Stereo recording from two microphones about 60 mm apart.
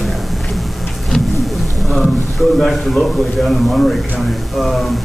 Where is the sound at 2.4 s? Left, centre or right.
Centre.